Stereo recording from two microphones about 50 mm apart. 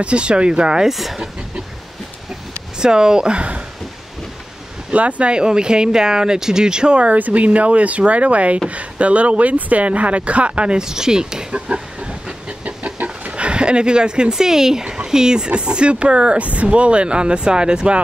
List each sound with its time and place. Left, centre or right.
0.0 s speech: right
0.8 s speech: centre
2.8 s speech: centre
4.9 s speech: right; by 11.4 s centre
11.5 s a sound: right
15.0 s speech: centre